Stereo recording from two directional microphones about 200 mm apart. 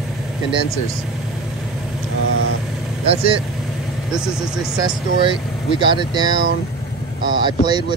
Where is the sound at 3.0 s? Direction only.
25° right (ahead or behind).